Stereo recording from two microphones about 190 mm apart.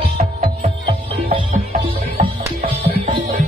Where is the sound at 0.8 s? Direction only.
30° right (ahead or behind).